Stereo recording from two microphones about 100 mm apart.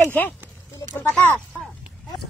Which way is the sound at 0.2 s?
15° left (ahead or behind).